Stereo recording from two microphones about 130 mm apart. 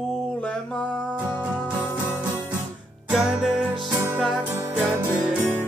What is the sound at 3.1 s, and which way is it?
Music, 5° right (ahead or behind).